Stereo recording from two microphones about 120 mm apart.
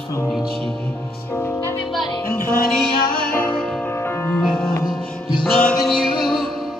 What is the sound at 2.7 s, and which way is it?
Music, 5° left (ahead or behind).